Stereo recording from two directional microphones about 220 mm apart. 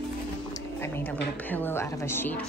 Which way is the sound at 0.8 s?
10° left (ahead or behind).